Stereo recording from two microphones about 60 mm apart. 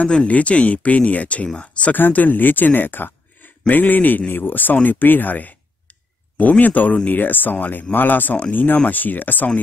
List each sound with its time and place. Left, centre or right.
0.0 s speech: centre
2.0 s speech: left
6.6 s speech: left